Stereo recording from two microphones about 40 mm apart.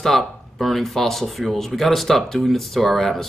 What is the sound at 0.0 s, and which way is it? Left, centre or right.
Speech, centre.